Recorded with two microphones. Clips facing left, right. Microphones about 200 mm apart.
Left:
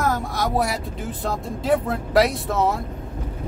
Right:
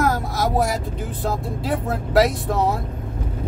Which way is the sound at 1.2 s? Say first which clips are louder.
Right 2 dB; centre (ahead or behind).